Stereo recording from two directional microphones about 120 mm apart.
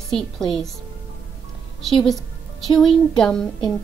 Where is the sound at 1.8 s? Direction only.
Centre (ahead or behind).